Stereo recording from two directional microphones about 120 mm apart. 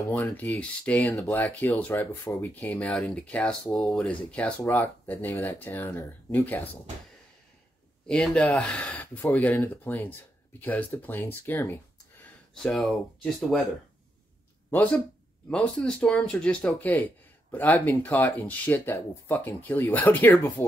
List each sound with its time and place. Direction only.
0.1 s speech: 15° left (ahead or behind)
8.1 s speech: 5° left (ahead or behind); by 11.8 s 20° left (ahead or behind)
12.7 s speech: centre (ahead or behind)
14.7 s speech: 15° left (ahead or behind)